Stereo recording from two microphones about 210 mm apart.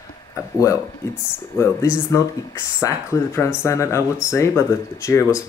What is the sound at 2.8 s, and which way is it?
Speech, 15° left (ahead or behind).